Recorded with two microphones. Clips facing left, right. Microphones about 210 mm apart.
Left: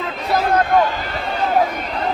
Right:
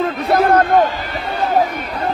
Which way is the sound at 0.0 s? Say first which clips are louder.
Right 5 dB; 55° right (ahead or behind).